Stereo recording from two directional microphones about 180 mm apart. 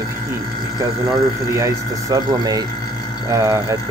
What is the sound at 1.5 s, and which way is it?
Speech, 20° right (ahead or behind).